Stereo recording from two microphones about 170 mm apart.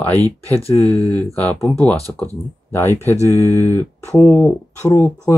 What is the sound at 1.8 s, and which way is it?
Speech, 10° left (ahead or behind).